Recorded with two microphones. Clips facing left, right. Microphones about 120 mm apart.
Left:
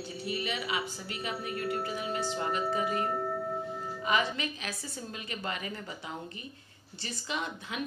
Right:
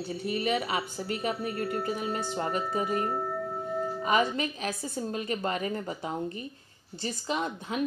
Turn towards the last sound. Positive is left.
turn(degrees=-40)  # may be behind; listen again after turning